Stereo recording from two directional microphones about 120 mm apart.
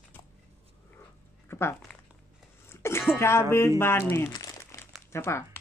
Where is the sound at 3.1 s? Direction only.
20° left (ahead or behind).